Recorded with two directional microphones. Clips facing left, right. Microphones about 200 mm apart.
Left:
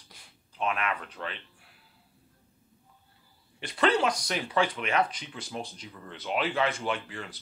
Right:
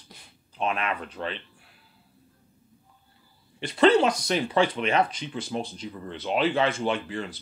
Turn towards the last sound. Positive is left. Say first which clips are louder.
# right 5 dB
turn(degrees=-25)  # may be behind; listen again after turning